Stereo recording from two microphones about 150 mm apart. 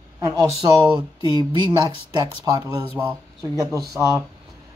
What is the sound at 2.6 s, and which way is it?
Speech, 10° right (ahead or behind).